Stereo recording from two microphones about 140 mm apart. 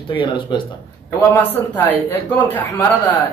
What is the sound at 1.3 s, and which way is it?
A man's voice, 15° left (ahead or behind).